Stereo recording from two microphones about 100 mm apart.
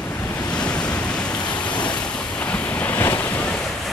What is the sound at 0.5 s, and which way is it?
Waves, 10° left (ahead or behind).